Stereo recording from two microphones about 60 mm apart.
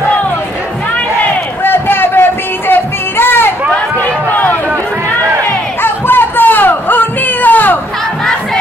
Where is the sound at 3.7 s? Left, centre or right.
Left.